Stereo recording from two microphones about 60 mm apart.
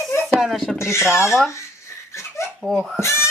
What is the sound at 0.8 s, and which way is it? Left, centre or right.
Speech, left.